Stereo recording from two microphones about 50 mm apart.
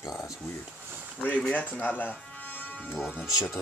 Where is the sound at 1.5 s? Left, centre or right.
Left.